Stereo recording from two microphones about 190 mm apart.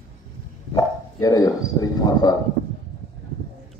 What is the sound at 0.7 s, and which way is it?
Speech, 20° left (ahead or behind).